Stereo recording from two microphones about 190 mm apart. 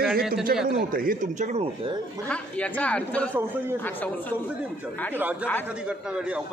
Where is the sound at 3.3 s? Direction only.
10° right (ahead or behind).